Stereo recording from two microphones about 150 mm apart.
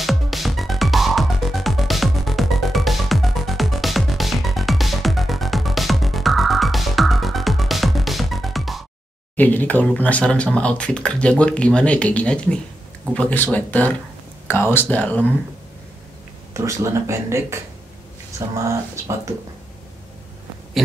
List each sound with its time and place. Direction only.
0.0 s music: centre (ahead or behind)
9.4 s speech: 10° left (ahead or behind)
16.5 s speech: 20° right (ahead or behind)